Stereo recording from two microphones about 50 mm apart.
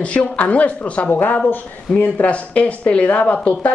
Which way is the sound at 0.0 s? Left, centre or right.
Left.